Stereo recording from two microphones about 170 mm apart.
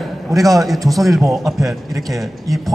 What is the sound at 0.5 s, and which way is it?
A man's voice, centre (ahead or behind).